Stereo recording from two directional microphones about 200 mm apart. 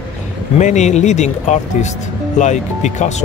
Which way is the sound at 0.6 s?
35° left (ahead or behind).